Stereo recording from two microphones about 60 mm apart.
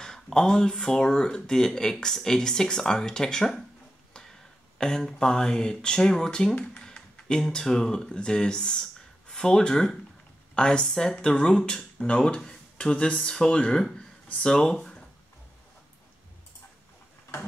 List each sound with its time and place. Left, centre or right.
0.0 s speech: centre
4.7 s speech: centre